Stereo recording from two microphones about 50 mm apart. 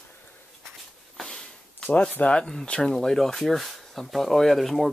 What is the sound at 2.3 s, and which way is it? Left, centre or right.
Speech, centre.